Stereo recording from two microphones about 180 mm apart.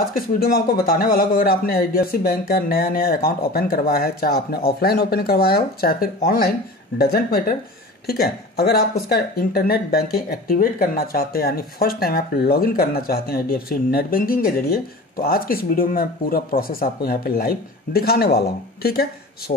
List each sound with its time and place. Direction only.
0.1 s speech: 55° left (ahead or behind)